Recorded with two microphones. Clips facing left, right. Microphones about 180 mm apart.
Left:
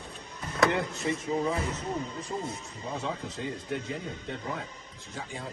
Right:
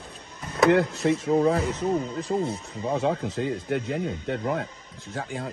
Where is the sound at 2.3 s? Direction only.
80° right.